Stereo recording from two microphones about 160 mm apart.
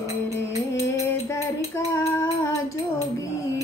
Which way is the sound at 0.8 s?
15° left (ahead or behind).